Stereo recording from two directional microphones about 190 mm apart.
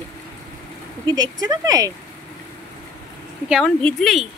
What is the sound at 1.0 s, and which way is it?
Speech, 20° right (ahead or behind).